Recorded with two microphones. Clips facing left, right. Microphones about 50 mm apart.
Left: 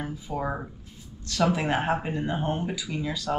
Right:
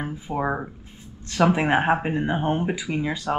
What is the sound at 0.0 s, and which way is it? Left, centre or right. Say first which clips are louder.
Speech: right 4 dB; right.